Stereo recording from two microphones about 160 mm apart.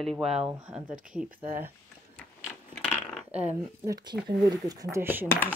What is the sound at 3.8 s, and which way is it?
Speech, 20° right (ahead or behind).